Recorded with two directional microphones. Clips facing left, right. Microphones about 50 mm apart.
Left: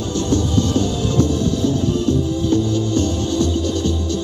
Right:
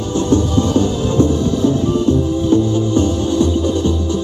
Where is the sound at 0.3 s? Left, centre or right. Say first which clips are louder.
Right 4 dB; right.